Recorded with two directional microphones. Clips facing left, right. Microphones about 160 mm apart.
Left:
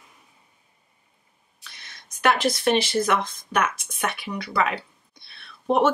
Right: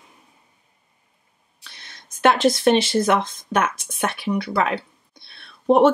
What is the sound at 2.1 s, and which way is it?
Speech, 25° right (ahead or behind).